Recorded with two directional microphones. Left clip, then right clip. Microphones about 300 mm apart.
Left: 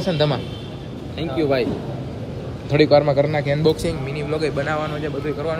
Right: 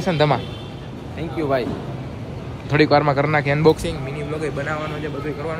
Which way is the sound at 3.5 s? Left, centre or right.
Centre.